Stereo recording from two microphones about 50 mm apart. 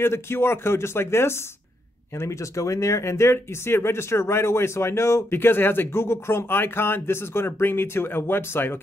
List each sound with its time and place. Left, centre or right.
0.0 s speech: left
2.1 s speech: left
5.4 s speech: left